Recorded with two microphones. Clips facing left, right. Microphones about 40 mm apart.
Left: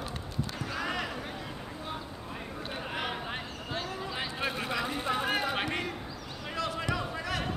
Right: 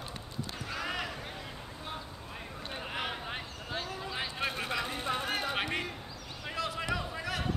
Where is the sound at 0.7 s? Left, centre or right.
Centre.